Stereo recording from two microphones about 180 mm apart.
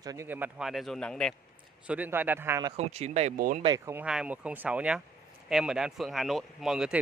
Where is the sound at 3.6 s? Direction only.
20° right (ahead or behind).